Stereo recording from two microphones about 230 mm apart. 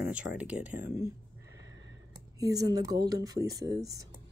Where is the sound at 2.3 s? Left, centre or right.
Centre.